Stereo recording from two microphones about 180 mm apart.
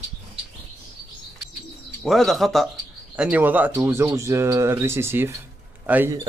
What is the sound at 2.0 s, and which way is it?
Speech, centre (ahead or behind).